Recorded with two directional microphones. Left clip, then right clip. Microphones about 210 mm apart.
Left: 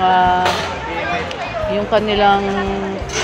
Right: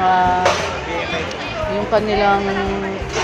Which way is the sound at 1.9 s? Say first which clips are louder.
Left 2 dB; 35° left (ahead or behind).